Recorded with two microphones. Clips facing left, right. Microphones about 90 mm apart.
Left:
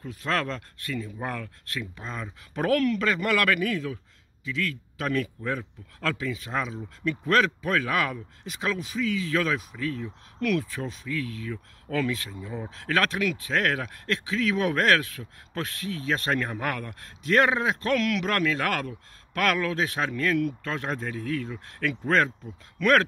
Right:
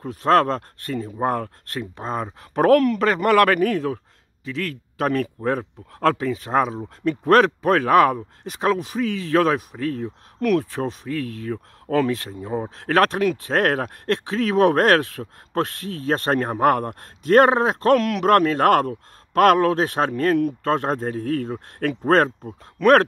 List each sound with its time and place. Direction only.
0.0 s speech: 45° right (ahead or behind)